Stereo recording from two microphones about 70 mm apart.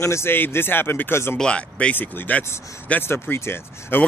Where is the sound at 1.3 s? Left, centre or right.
Centre.